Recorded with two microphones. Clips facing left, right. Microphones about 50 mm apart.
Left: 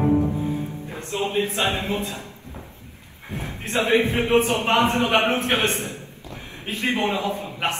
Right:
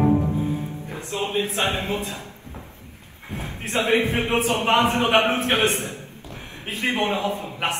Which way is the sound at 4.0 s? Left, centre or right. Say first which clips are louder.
Left 3 dB; right.